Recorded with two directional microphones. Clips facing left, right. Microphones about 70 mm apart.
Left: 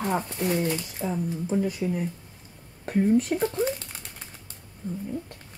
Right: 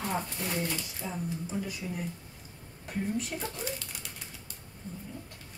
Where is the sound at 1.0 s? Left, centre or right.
Left.